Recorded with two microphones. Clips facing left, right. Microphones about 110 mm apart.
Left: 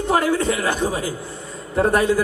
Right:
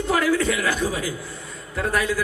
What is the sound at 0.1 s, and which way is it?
A man's voice, 30° left (ahead or behind).